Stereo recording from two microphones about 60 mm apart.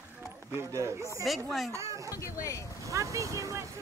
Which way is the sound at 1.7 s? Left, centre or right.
Right.